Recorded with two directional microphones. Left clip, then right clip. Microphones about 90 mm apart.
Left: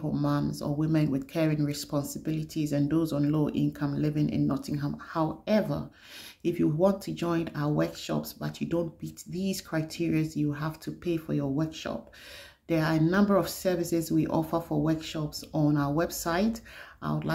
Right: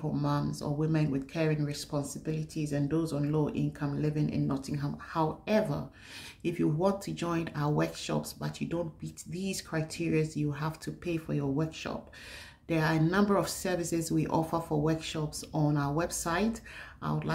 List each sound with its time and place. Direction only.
0.0 s speech: 25° left (ahead or behind)
8.6 s speech: 40° left (ahead or behind)
9.3 s speech: 15° left (ahead or behind)